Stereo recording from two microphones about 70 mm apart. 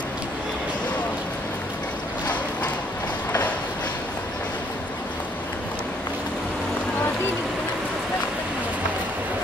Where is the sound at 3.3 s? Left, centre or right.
Left.